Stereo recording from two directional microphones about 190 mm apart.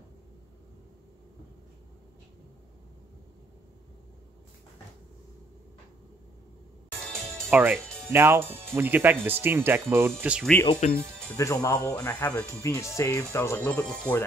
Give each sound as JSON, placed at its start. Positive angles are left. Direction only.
{"t": 7.0, "sound": "music", "side_deg": 0}
{"t": 7.5, "sound": "speech", "side_deg": -10}
{"t": 10.8, "sound": "speech", "side_deg": 40}
{"t": 11.3, "sound": "speech", "side_deg": 15}